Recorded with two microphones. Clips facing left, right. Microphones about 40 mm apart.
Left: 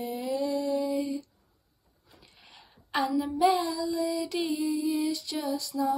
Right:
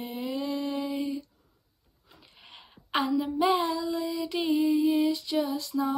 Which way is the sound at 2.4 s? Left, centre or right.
Right.